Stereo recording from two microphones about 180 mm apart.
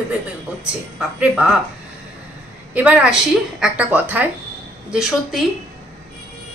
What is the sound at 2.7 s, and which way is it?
A woman's voice, 5° right (ahead or behind).